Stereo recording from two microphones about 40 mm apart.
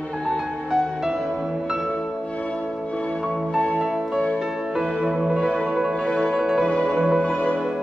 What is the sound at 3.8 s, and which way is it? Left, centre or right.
Music, centre.